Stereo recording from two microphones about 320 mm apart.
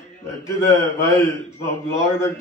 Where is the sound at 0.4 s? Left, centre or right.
Centre.